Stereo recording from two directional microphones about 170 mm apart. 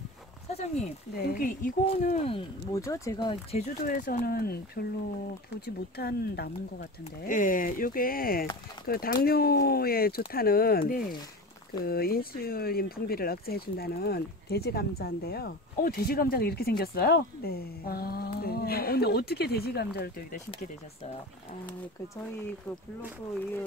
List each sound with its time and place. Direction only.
0.5 s speech: 40° left (ahead or behind)
1.1 s speech: 60° left (ahead or behind)
2.7 s speech: 20° left (ahead or behind)
3.5 s speech: 50° left (ahead or behind)
5.9 s speech: 70° left (ahead or behind)
7.2 s speech: 50° left (ahead or behind); by 19.9 s 70° left (ahead or behind)